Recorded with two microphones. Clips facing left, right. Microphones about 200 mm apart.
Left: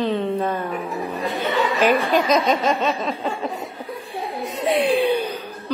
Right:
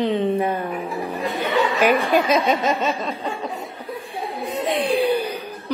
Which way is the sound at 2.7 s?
Centre (ahead or behind).